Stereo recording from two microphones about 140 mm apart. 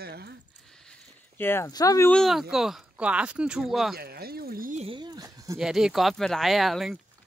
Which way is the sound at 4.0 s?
90° right.